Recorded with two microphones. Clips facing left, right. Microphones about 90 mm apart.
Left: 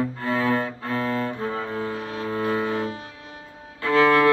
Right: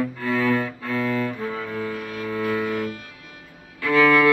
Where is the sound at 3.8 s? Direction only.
30° left (ahead or behind).